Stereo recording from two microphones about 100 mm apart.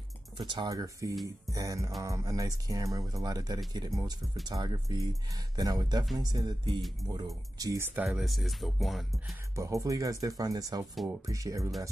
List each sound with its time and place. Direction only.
0.4 s speech: 50° right (ahead or behind)
0.7 s speech: 35° right (ahead or behind)
7.8 s speech: 15° right (ahead or behind)
8.2 s speech: centre (ahead or behind)
9.6 s speech: 30° right (ahead or behind)